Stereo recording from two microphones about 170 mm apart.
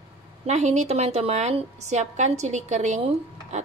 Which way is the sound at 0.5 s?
40° right (ahead or behind).